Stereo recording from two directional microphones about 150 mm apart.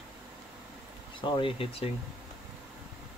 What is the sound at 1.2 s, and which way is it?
Speech, 35° left (ahead or behind).